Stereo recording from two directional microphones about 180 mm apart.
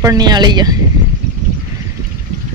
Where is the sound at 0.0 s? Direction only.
20° right (ahead or behind).